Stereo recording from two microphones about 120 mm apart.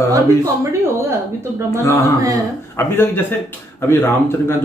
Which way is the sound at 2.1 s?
30° right (ahead or behind).